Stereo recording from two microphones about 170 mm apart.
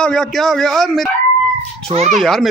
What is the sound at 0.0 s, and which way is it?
Speech, 5° left (ahead or behind).